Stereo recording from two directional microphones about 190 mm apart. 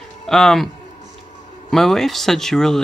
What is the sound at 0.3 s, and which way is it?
Speech, centre (ahead or behind).